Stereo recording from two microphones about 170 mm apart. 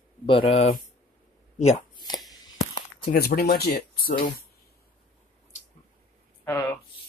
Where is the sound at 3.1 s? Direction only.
65° left (ahead or behind).